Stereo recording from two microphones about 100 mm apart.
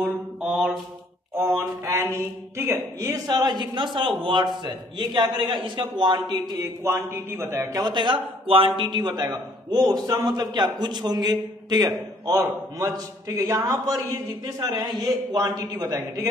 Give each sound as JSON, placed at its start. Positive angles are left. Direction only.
{"t": 0.0, "sound": "mantra", "side_deg": -5}
{"t": 1.3, "sound": "a sound", "side_deg": -25}
{"t": 3.3, "sound": "a man's voice", "side_deg": -45}
{"t": 6.6, "sound": "speech", "side_deg": -25}
{"t": 7.7, "sound": "a man's voice", "side_deg": -45}
{"t": 12.4, "sound": "a man's voice", "side_deg": -30}